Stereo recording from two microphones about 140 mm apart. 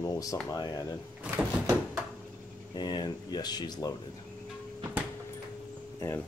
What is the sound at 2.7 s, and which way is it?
Speech, 30° left (ahead or behind).